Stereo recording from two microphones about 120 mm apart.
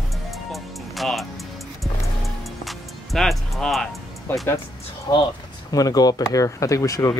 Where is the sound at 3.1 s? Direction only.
Centre (ahead or behind).